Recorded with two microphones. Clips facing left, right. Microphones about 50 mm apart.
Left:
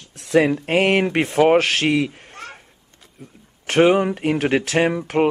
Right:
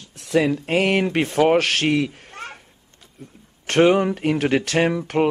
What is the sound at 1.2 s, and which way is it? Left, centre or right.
A man's voice, centre.